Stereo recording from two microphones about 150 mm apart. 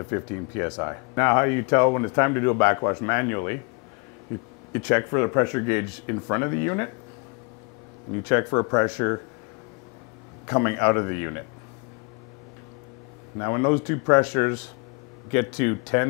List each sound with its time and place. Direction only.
0.0 s speech: 20° left (ahead or behind)
4.7 s speech: 20° left (ahead or behind)
8.1 s speech: 20° left (ahead or behind)
10.4 s speech: 20° left (ahead or behind)
13.4 s speech: 20° left (ahead or behind)